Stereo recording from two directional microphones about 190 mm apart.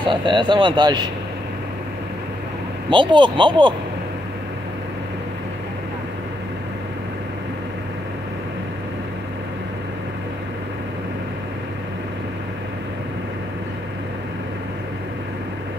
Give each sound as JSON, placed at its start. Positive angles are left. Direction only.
{"t": 0.1, "sound": "speech", "side_deg": -25}
{"t": 2.9, "sound": "speech", "side_deg": -25}